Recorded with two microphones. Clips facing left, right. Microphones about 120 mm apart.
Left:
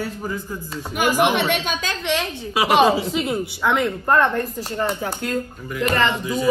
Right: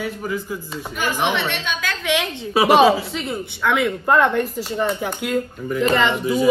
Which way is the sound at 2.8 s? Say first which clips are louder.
Right 1 dB; 5° left (ahead or behind).